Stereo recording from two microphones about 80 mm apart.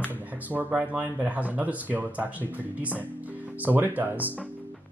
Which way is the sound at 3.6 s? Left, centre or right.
Right.